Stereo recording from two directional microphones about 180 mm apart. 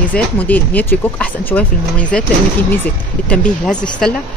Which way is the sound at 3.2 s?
5° left (ahead or behind).